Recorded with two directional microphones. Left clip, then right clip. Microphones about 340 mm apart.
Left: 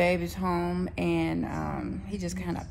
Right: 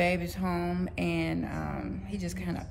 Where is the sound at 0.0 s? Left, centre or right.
Centre.